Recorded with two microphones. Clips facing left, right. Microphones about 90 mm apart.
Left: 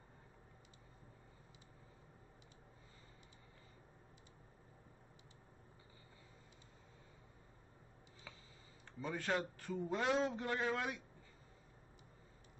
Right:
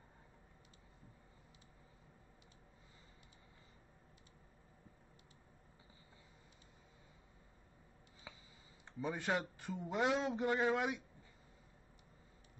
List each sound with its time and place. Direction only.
9.0 s a man's voice: 15° right (ahead or behind)